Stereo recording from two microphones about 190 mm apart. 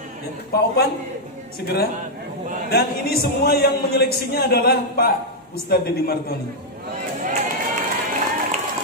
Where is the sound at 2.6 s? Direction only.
55° left (ahead or behind).